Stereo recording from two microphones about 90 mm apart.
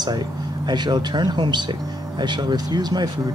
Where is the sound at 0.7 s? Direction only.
55° right (ahead or behind).